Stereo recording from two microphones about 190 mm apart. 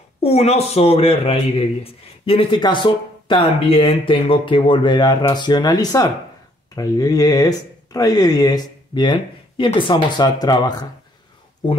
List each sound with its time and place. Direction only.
0.2 s a man's voice: 35° left (ahead or behind)